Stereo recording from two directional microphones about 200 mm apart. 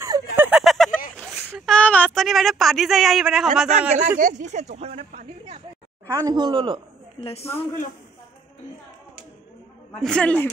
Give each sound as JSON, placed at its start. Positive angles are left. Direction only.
{"t": 0.0, "sound": "a sound", "side_deg": -15}
{"t": 1.1, "sound": "speech", "side_deg": 5}
{"t": 4.2, "sound": "speech", "side_deg": -40}
{"t": 6.1, "sound": "speech", "side_deg": -20}
{"t": 7.2, "sound": "a woman's voice", "side_deg": 30}
{"t": 10.0, "sound": "speech", "side_deg": 5}